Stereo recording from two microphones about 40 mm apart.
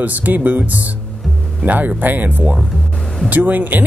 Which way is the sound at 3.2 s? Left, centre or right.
Right.